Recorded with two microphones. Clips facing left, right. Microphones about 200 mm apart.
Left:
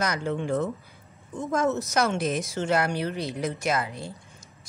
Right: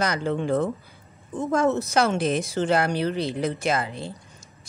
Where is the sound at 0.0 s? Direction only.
30° right (ahead or behind).